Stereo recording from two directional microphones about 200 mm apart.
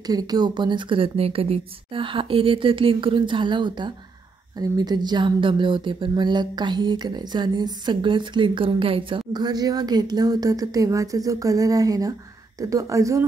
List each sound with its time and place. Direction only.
0.0 s speech: 20° right (ahead or behind)